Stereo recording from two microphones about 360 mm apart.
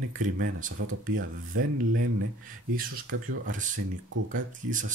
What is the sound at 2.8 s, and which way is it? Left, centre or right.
Speech, right.